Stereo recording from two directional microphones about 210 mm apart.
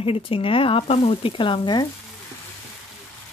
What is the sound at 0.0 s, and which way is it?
Speech, 25° left (ahead or behind).